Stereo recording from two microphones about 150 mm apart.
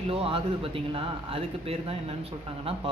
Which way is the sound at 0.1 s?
40° right (ahead or behind).